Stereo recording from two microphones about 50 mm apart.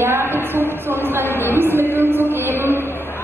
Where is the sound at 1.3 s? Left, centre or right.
Left.